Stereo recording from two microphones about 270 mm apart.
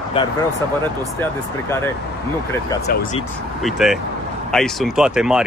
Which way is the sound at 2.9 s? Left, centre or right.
Left.